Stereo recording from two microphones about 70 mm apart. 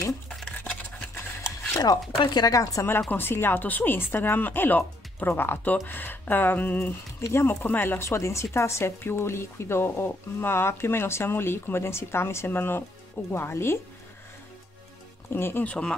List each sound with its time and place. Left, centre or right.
0.7 s a sound: centre
1.8 s speech: left
3.1 s speech: left
7.2 s speech: left
15.2 s speech: left
15.6 s speech: centre